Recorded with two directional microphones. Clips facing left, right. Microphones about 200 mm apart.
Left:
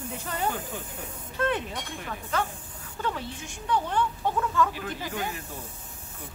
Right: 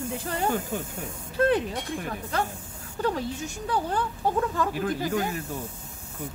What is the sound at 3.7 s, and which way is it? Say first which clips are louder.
Speech: left 1 dB; 40° right (ahead or behind).